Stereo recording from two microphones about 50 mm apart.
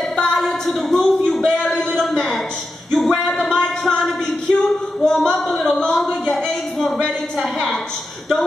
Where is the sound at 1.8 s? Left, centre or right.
Centre.